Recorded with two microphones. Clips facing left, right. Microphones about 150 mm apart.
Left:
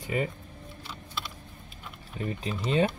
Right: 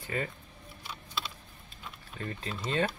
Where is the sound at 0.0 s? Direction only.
15° left (ahead or behind).